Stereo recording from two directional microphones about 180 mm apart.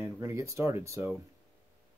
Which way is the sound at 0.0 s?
15° right (ahead or behind).